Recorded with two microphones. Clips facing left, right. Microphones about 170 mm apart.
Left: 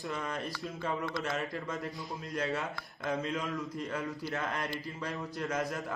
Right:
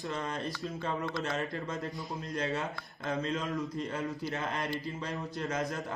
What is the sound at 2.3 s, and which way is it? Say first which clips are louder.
Speech: even; 20° right (ahead or behind).